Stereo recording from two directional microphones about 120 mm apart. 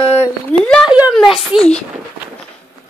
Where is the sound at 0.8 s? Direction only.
10° right (ahead or behind).